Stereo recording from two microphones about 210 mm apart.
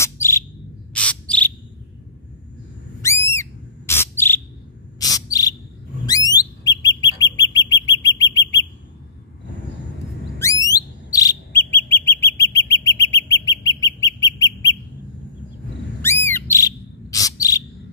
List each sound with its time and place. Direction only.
0.0 s bird: 15° left (ahead or behind)
3.0 s bird: 10° left (ahead or behind)
6.0 s whistle: 20° left (ahead or behind)
7.5 s bird: 15° left (ahead or behind)
10.4 s bird: 15° left (ahead or behind)
16.0 s bird: 10° left (ahead or behind)